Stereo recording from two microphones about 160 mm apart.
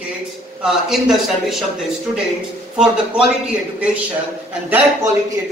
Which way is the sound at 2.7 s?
5° right (ahead or behind).